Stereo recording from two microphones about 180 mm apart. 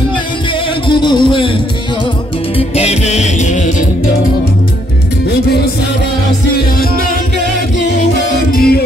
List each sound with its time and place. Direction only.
0.8 s a sound: 25° left (ahead or behind)
2.5 s music: 35° left (ahead or behind)
7.8 s music: 60° left (ahead or behind)